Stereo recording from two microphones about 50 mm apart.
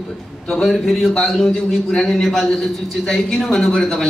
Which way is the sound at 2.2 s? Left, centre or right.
Centre.